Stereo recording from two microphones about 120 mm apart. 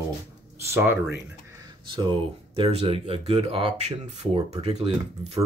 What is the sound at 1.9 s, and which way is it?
Speech, 45° right (ahead or behind).